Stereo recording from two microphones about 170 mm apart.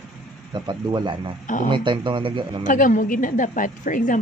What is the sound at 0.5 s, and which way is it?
Speech, 25° right (ahead or behind).